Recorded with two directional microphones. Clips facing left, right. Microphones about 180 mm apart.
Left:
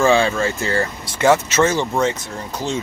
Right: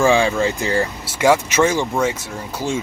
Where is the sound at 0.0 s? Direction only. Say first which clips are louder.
Even; 15° right (ahead or behind).